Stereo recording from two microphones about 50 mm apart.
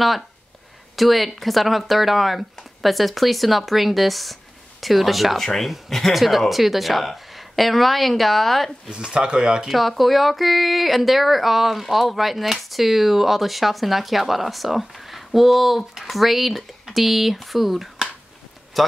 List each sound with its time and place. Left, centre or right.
0.9 s speech: centre
8.9 s speech: centre
9.7 s speech: centre